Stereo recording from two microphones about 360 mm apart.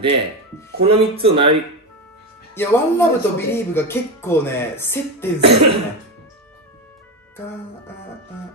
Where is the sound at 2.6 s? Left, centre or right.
Centre.